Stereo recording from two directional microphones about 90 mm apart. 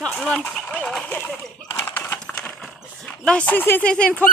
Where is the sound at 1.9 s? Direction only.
20° left (ahead or behind).